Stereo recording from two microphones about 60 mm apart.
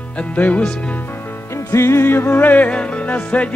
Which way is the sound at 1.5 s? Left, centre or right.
Left.